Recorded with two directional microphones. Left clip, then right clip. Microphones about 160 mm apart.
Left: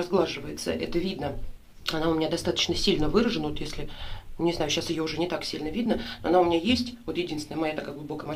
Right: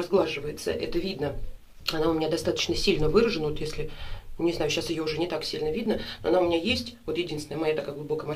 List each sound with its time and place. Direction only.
0.0 s speech: 10° left (ahead or behind)